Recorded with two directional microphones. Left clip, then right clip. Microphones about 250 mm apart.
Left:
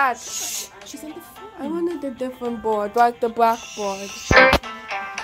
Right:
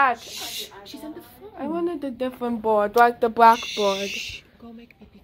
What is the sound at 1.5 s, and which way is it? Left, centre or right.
Speech, centre.